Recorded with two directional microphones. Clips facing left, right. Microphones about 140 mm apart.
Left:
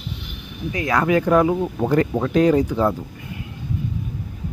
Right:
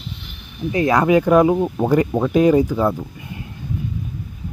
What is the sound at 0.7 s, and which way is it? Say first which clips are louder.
Speech: right 4 dB; 25° right (ahead or behind).